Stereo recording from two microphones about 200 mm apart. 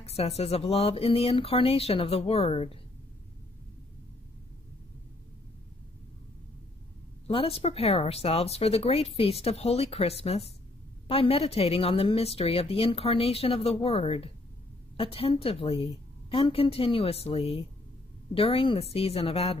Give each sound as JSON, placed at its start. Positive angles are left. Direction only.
{"t": 0.0, "sound": "speech", "side_deg": 30}
{"t": 7.2, "sound": "speech", "side_deg": 30}